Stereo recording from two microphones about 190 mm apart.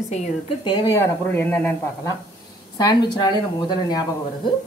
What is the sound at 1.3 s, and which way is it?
Speech, 10° left (ahead or behind).